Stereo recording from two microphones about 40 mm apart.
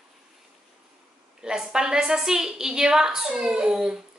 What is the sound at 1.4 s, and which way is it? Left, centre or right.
A woman's voice, centre.